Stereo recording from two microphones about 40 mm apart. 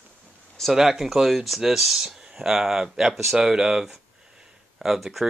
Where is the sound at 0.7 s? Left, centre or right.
Centre.